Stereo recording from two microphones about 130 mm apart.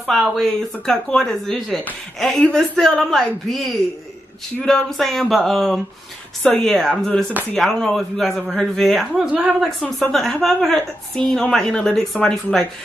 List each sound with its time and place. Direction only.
0.0 s a woman's voice: centre (ahead or behind)